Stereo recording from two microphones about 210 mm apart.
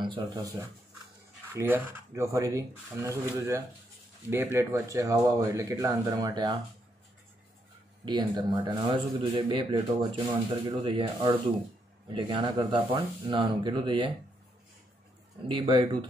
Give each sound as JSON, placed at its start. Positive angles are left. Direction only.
{"t": 0.0, "sound": "speech", "side_deg": -20}
{"t": 8.0, "sound": "speech", "side_deg": -20}
{"t": 15.4, "sound": "speech", "side_deg": -25}